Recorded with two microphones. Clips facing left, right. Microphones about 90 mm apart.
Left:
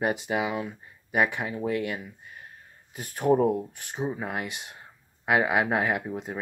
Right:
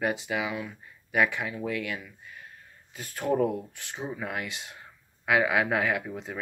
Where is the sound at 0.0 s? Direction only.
55° left (ahead or behind).